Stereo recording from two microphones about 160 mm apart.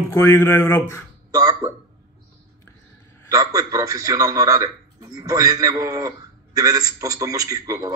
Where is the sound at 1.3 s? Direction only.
25° right (ahead or behind).